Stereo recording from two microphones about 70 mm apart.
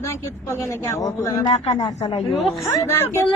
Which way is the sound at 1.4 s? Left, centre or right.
Left.